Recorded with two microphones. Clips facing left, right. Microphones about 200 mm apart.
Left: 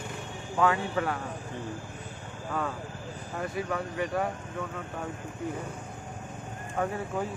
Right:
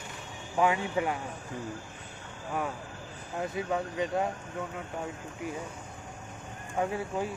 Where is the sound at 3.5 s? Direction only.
25° right (ahead or behind).